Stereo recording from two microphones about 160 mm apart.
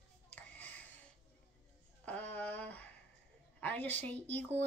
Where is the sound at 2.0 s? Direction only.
10° left (ahead or behind).